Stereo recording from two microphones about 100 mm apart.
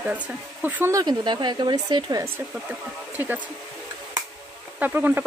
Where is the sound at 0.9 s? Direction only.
45° right (ahead or behind).